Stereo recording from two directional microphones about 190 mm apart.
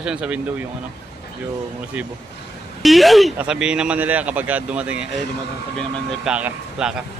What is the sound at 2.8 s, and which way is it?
Speech, centre (ahead or behind).